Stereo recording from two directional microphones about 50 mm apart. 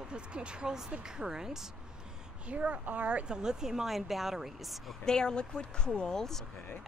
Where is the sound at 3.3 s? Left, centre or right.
Centre.